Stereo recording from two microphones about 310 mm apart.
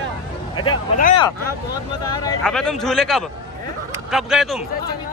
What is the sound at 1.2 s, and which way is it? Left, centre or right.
Speech, centre.